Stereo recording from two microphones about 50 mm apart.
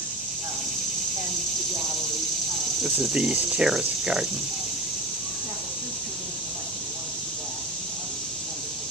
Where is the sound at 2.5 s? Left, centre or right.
Centre.